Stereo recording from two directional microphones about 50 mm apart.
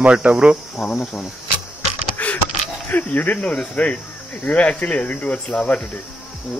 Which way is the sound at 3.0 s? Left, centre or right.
Left.